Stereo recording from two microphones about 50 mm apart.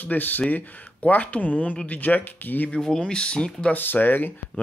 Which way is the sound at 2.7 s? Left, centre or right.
Centre.